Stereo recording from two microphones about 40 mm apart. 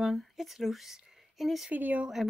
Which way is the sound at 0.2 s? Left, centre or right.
Centre.